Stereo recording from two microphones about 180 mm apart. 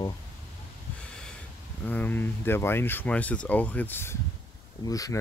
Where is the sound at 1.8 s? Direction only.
10° left (ahead or behind).